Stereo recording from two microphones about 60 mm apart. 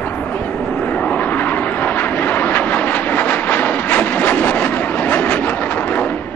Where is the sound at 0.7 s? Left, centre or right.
Left.